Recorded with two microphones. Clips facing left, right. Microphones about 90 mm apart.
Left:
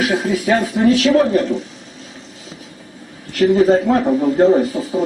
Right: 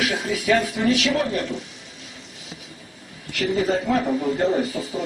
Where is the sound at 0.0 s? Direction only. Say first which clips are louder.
Left 7 dB; 40° left (ahead or behind).